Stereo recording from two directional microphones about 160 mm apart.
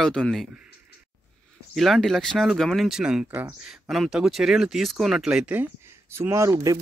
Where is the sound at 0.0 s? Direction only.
5° left (ahead or behind).